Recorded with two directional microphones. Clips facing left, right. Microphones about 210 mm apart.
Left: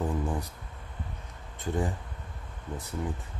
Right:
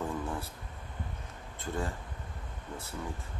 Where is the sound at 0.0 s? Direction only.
15° left (ahead or behind).